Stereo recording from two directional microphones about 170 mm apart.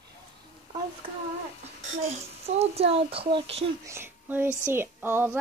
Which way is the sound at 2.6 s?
35° right (ahead or behind).